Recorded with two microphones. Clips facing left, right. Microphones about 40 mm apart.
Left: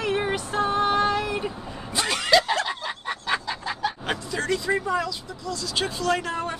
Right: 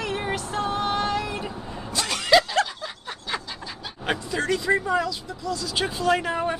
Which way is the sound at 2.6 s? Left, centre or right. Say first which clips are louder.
Left 5 dB; left.